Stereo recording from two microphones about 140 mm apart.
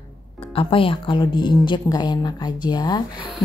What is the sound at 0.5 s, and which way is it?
Speech, 40° left (ahead or behind).